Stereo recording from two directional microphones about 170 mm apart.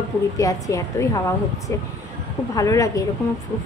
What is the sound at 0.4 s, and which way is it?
Speech, 20° left (ahead or behind).